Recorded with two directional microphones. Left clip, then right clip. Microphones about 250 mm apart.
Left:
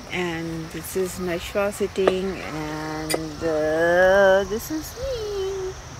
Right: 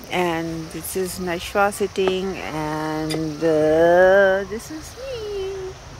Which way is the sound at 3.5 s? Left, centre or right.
Right.